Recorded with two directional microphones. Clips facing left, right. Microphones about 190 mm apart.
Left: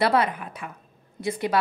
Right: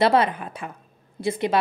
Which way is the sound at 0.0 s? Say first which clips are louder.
Right 3 dB; 25° right (ahead or behind).